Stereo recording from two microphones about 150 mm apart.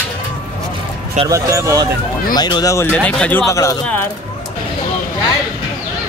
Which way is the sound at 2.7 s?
10° left (ahead or behind).